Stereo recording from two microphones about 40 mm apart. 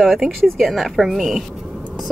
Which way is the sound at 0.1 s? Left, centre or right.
Centre.